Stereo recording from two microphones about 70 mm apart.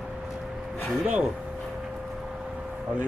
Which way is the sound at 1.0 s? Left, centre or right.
Centre.